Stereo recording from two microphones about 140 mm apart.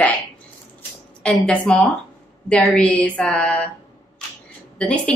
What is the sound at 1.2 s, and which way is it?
Speech, 10° left (ahead or behind).